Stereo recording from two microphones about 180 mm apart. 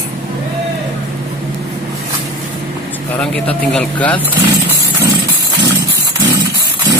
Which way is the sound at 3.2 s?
5° left (ahead or behind).